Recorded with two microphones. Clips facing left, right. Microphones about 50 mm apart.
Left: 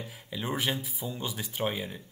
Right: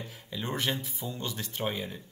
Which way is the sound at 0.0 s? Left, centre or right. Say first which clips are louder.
Left 1 dB; centre.